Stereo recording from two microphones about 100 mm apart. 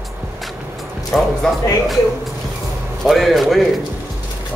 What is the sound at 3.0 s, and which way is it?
Speech, centre (ahead or behind).